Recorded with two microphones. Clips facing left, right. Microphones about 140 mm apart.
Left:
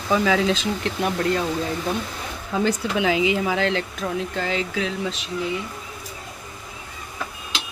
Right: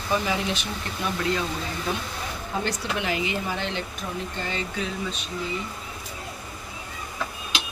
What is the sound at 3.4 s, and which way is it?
Speech, 90° left.